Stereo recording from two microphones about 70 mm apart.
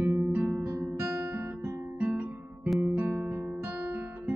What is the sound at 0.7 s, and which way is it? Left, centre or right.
Guitar, right.